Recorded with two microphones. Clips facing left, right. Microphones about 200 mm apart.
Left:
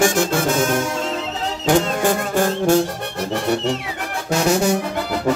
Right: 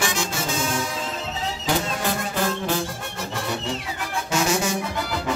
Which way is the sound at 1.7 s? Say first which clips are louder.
Left 8 dB; 50° left (ahead or behind).